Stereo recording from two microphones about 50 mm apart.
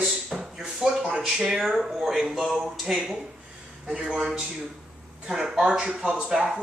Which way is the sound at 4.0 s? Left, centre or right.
Centre.